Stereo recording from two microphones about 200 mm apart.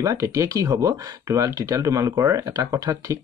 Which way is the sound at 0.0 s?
15° right (ahead or behind).